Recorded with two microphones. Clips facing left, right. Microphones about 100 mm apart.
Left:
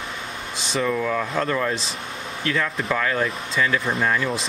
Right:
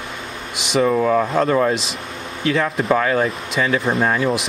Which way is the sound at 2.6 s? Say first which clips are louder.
Right 7 dB; 35° right (ahead or behind).